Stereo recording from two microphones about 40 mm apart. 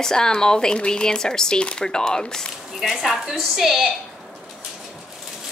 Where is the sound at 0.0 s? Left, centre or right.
Centre.